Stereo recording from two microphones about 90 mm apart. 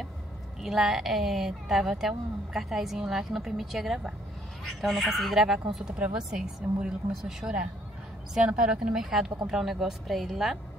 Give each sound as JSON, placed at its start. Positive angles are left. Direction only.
{"t": 0.6, "sound": "a woman's voice", "side_deg": -5}